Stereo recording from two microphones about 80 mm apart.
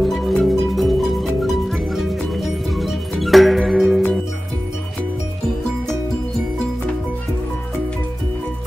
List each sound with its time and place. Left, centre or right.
0.0 s music: centre